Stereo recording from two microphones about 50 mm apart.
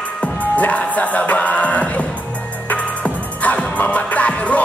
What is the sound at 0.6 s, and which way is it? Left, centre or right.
Music, left.